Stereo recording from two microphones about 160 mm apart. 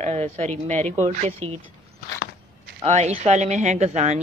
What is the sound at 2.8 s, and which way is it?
Speech, 45° right (ahead or behind).